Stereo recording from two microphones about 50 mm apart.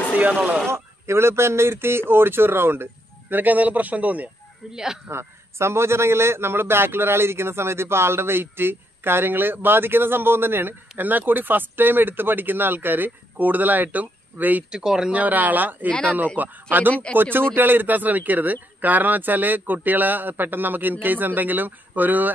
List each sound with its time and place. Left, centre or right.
0.2 s speech: right
0.7 s a man's voice: right
5.0 s a man's voice: right
14.7 s speech: centre
15.1 s a man's voice: right
15.9 s speech: left
16.3 s a man's voice: right
16.9 s speech: left
17.2 s a man's voice: right